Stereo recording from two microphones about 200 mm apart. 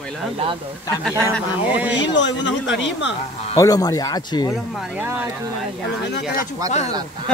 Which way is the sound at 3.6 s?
20° left (ahead or behind).